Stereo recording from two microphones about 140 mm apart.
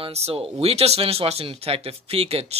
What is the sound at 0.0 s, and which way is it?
Speech, 45° right (ahead or behind).